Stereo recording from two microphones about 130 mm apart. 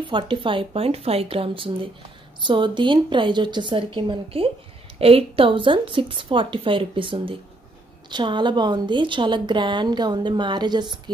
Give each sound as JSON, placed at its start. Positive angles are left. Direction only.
{"t": 0.0, "sound": "a woman's voice", "side_deg": -40}